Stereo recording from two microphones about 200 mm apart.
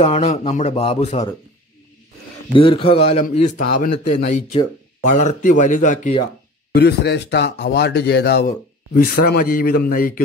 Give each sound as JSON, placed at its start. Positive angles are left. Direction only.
{"t": 0.0, "sound": "speech", "side_deg": 30}
{"t": 2.5, "sound": "a man's voice", "side_deg": 25}
{"t": 3.3, "sound": "speech", "side_deg": 45}
{"t": 5.0, "sound": "speech", "side_deg": 40}
{"t": 6.7, "sound": "speech", "side_deg": 55}